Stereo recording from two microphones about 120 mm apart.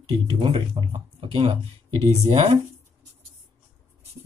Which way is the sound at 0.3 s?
45° right (ahead or behind).